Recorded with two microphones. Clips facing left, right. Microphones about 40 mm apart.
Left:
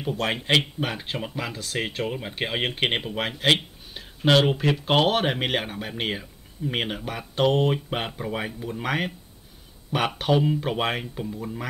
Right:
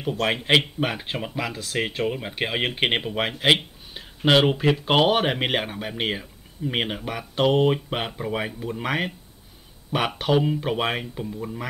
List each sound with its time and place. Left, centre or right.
0.2 s speech: centre